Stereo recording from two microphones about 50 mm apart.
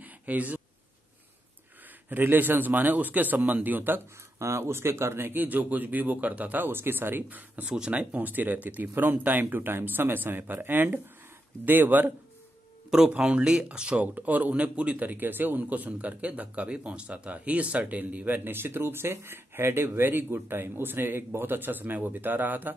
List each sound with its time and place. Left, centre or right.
0.0 s a sound: right
2.0 s speech: right
4.4 s speech: right
5.3 s speech: right
7.7 s speech: right
13.1 s speech: right